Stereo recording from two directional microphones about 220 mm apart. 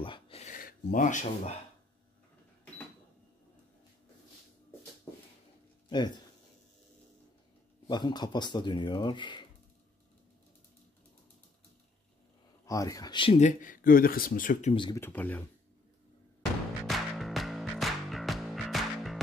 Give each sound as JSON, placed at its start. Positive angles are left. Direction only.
{"t": 0.0, "sound": "a sound", "side_deg": 25}
{"t": 5.9, "sound": "speech", "side_deg": 20}
{"t": 7.9, "sound": "speech", "side_deg": 20}
{"t": 12.6, "sound": "speech", "side_deg": 15}
{"t": 14.7, "sound": "speech", "side_deg": 20}
{"t": 15.0, "sound": "speech", "side_deg": 10}
{"t": 16.8, "sound": "music", "side_deg": 0}